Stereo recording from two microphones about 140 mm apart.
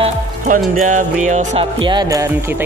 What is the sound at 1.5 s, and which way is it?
Music, 35° right (ahead or behind).